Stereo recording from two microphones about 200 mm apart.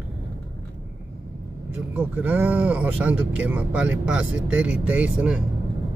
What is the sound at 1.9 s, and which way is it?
Speech, 10° right (ahead or behind).